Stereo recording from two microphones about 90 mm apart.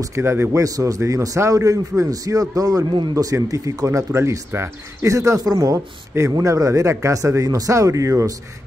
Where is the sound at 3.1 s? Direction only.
40° right (ahead or behind).